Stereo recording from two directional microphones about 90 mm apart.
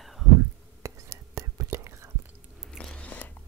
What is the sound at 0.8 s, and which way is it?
Whispering, 30° right (ahead or behind).